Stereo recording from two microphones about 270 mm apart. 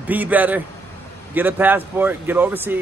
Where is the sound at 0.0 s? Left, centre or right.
Centre.